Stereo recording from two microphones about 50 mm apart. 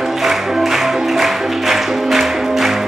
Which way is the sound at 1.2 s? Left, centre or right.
Centre.